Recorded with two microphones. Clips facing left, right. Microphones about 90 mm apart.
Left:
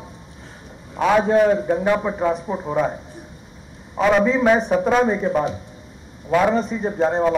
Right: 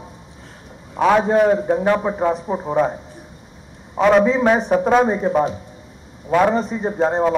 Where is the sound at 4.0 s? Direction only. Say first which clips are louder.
Right 2 dB; centre (ahead or behind).